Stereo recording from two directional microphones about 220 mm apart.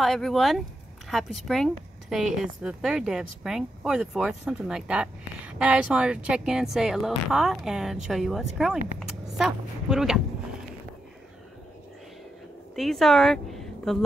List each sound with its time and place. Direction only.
0.0 s speech: centre (ahead or behind)
12.7 s a woman's voice: centre (ahead or behind)